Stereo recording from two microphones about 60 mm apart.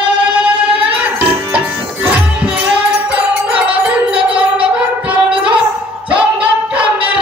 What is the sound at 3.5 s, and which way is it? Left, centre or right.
Wind chime, right.